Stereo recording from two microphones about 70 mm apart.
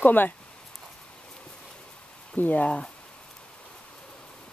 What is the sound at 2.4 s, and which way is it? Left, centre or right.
Speech, left.